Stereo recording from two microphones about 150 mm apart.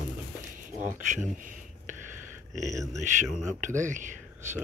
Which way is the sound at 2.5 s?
55° right (ahead or behind).